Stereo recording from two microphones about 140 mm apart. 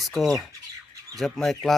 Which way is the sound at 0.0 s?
Centre (ahead or behind).